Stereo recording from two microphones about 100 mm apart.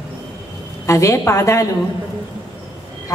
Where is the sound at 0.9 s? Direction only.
30° left (ahead or behind).